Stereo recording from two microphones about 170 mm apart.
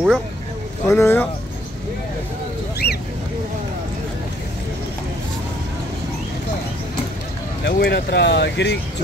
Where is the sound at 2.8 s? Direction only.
70° left (ahead or behind).